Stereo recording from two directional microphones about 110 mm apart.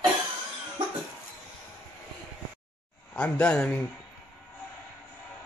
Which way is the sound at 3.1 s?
10° left (ahead or behind).